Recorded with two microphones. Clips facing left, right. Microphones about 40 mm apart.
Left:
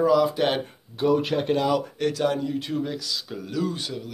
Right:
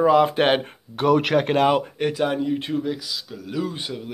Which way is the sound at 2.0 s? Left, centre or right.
Right.